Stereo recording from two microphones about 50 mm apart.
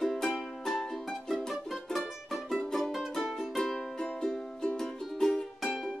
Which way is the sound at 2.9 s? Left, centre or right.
Centre.